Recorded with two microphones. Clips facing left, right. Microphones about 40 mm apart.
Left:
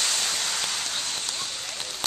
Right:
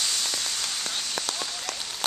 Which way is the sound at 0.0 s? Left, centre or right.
Left.